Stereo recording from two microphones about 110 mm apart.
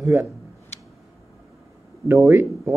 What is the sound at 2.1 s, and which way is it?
Speech, 25° right (ahead or behind).